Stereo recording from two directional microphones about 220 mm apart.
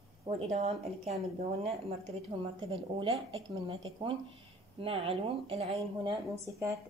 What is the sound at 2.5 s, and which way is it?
Speech, 25° right (ahead or behind).